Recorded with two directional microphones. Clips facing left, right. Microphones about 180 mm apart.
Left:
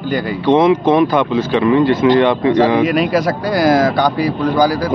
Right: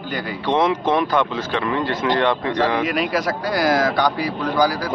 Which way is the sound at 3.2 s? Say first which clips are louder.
Left 6 dB; 30° left (ahead or behind).